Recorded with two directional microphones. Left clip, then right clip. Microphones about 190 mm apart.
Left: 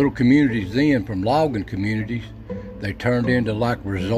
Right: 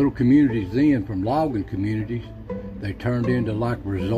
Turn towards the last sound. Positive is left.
turn(degrees=40)  # may be behind; listen again after turning